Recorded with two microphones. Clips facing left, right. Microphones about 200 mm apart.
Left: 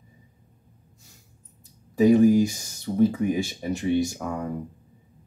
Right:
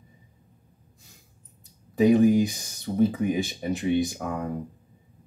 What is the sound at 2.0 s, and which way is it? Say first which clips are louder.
Speech: left 2 dB; 20° right (ahead or behind).